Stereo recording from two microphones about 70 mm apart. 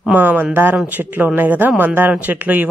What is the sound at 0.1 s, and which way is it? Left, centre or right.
Speech, right.